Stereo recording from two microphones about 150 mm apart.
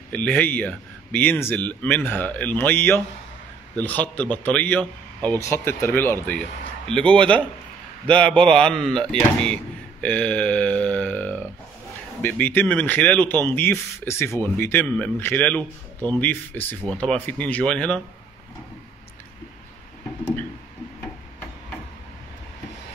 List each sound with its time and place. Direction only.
0.1 s a man's voice: 10° left (ahead or behind)
8.9 s speech: 30° right (ahead or behind)
10.0 s speech: 10° left (ahead or behind)